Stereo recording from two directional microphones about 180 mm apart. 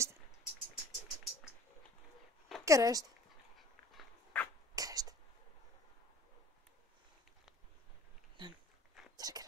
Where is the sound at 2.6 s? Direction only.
20° right (ahead or behind).